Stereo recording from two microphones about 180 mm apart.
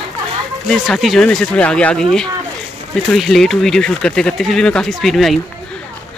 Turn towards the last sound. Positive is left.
turn(degrees=0)  # may be behind; listen again after turning